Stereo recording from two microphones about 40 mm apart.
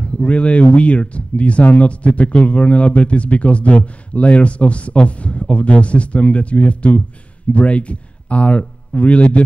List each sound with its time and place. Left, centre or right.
0.0 s speech: left